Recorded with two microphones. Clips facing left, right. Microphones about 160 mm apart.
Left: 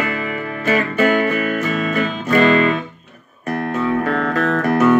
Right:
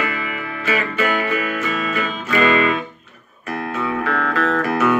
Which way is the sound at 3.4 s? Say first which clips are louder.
Left 4 dB; 45° left (ahead or behind).